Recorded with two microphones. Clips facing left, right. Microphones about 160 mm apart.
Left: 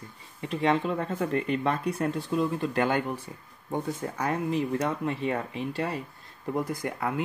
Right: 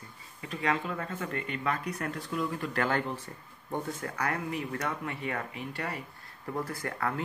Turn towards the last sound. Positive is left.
turn(degrees=15)  # may be behind; listen again after turning